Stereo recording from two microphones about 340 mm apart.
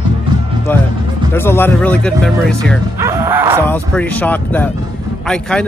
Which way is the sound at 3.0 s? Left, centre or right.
Centre.